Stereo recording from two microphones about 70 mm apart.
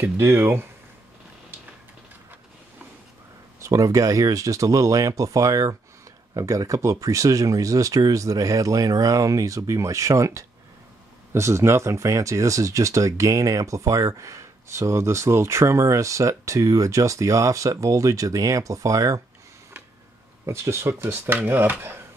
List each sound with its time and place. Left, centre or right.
0.0 s speech: right
3.5 s speech: right
20.4 s speech: right